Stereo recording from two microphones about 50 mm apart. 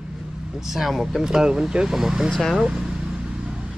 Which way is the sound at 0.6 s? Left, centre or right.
Centre.